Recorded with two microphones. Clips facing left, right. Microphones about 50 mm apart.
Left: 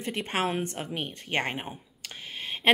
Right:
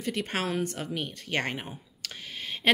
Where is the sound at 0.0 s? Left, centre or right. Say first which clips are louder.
Left 1 dB; left.